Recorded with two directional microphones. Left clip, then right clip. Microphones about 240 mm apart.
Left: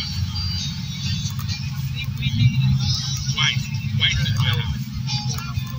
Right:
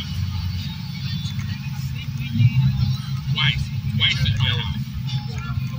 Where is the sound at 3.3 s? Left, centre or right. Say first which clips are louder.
Even; right.